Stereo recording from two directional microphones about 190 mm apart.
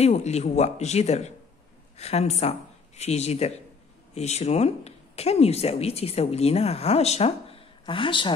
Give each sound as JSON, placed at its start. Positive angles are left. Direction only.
{"t": 0.0, "sound": "speech", "side_deg": 35}